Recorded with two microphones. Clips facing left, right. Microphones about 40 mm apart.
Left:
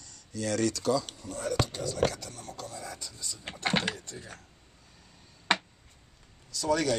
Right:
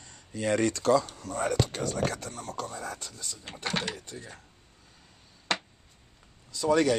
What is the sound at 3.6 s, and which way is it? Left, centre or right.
Speech, left.